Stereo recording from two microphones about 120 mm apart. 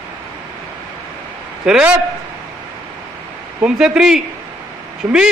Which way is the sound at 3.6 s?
5° right (ahead or behind).